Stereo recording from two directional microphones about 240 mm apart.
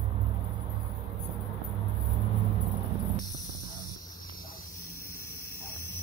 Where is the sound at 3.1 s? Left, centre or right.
Centre.